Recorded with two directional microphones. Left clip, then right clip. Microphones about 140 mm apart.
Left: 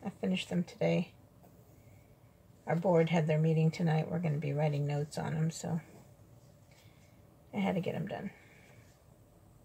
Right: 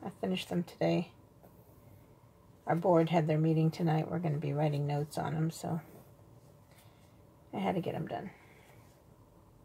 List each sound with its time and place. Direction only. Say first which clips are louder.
0.2 s speech: right 1 dB; 35° right (ahead or behind)
2.6 s speech: right 2 dB; 25° right (ahead or behind)
3.0 s speech: right 1 dB; 35° right (ahead or behind)
7.5 s speech: right 1 dB; 35° right (ahead or behind)